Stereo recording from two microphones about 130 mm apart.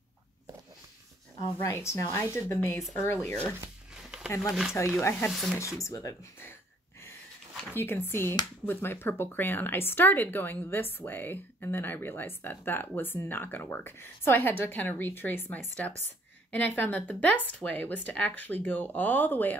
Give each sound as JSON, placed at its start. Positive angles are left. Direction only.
{"t": 1.4, "sound": "speech", "side_deg": 25}
{"t": 3.9, "sound": "a sound", "side_deg": -5}
{"t": 4.4, "sound": "speech", "side_deg": 0}
{"t": 4.7, "sound": "speech", "side_deg": 20}
{"t": 5.3, "sound": "speech", "side_deg": 0}
{"t": 5.6, "sound": "speech", "side_deg": 25}
{"t": 7.7, "sound": "speech", "side_deg": 15}